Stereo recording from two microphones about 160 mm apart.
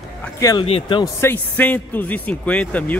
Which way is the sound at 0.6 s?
40° left (ahead or behind).